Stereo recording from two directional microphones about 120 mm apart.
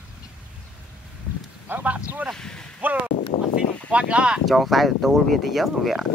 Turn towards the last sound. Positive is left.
turn(degrees=0)  # may be behind; listen again after turning